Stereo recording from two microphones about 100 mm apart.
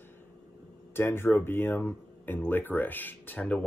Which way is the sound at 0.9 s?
25° left (ahead or behind).